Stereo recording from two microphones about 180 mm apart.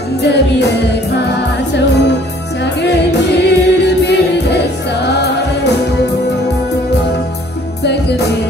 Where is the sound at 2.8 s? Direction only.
70° left (ahead or behind).